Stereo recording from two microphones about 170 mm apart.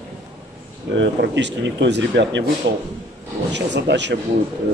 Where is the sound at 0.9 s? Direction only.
90° right.